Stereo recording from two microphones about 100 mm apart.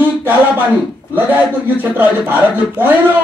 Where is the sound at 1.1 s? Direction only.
20° right (ahead or behind).